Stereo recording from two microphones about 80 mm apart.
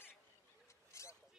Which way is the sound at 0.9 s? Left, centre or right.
Left.